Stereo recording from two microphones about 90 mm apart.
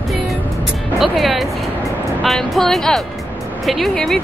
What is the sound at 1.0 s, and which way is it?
Speech, centre (ahead or behind).